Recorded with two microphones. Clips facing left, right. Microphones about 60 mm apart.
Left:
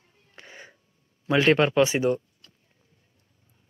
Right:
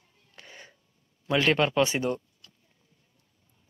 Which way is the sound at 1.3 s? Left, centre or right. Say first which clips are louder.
Left 4 dB; left.